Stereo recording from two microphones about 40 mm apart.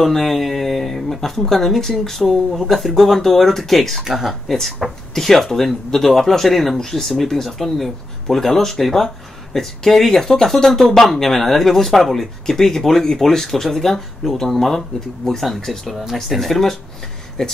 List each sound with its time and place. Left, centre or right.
0.0 s speech: centre
4.0 s speech: centre
4.5 s speech: centre
16.0 s speech: centre
17.4 s speech: centre